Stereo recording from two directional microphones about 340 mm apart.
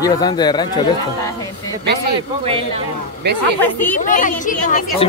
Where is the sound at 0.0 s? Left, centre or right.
Centre.